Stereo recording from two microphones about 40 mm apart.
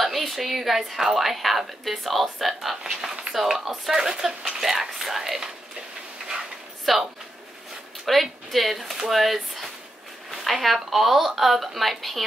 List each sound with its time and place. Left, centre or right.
0.0 s a woman's voice: centre; by 4.6 s right
4.6 s speech: centre
6.9 s a woman's voice: centre
8.1 s a woman's voice: centre